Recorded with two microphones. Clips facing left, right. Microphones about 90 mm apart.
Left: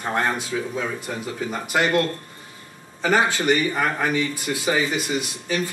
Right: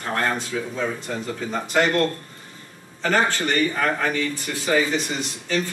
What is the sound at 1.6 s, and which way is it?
Speech, 10° left (ahead or behind).